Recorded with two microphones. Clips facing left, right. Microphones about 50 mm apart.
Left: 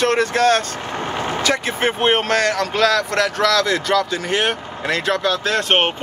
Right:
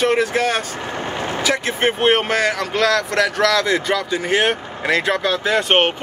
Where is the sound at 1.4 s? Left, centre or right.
Centre.